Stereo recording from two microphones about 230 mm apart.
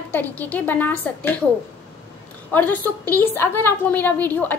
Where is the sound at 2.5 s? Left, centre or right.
Centre.